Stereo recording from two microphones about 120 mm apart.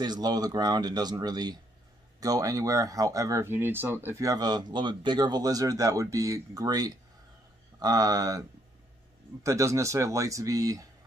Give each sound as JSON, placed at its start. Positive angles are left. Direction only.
{"t": 0.0, "sound": "speech", "side_deg": -35}